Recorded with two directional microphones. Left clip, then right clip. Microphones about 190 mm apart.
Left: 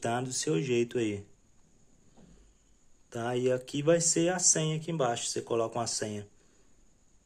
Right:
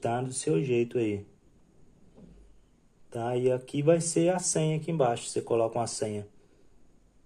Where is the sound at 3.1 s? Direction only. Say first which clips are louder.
Right 2 dB; 20° left (ahead or behind).